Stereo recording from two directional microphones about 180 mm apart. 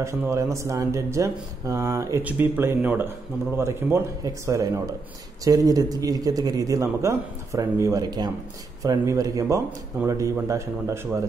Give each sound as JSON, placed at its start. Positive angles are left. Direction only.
{"t": 0.0, "sound": "a man's voice", "side_deg": -15}